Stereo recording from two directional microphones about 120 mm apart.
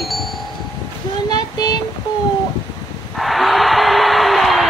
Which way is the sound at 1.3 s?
35° left (ahead or behind).